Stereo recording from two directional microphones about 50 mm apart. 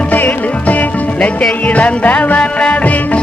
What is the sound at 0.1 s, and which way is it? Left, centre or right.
Music, left.